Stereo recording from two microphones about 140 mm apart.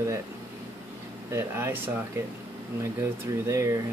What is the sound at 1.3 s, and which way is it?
Speech, 15° right (ahead or behind).